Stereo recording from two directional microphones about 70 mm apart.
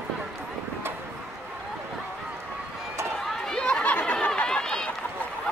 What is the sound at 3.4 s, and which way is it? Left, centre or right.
Chatter, centre.